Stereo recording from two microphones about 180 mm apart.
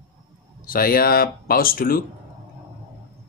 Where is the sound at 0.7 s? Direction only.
55° left (ahead or behind).